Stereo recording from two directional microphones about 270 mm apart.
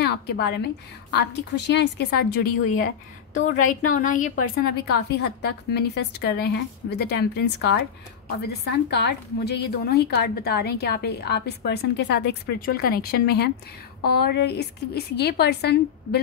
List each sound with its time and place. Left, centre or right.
0.0 s a woman's voice: left
8.9 s a woman's voice: left